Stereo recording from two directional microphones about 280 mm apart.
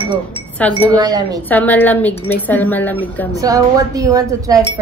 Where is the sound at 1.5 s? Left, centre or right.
Centre.